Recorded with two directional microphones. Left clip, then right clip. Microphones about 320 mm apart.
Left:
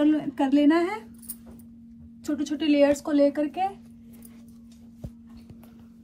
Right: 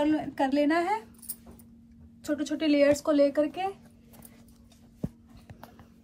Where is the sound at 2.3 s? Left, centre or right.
Centre.